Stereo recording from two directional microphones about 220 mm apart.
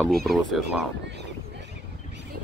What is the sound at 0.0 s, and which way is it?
Speech, centre (ahead or behind).